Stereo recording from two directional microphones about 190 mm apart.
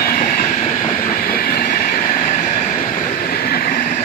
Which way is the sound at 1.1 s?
50° left (ahead or behind).